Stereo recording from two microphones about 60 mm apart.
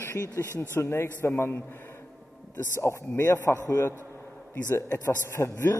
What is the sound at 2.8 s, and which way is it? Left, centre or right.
Speech, left.